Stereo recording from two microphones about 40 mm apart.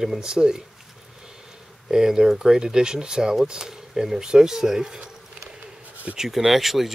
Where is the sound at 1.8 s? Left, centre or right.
Centre.